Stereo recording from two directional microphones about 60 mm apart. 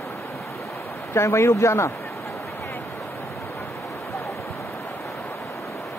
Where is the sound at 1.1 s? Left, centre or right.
Left.